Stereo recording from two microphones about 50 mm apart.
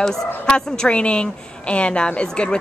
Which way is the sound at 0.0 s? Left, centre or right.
Centre.